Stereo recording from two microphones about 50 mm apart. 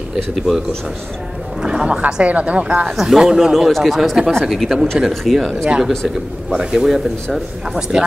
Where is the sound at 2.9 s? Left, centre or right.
Centre.